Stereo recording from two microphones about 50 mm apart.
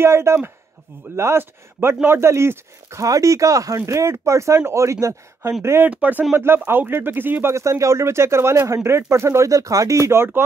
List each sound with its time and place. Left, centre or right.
0.0 s speech: right
1.4 s speech: right
5.6 s speech: right
5.9 s speech: right
6.3 s speech: right
7.5 s speech: right
10.1 s speech: right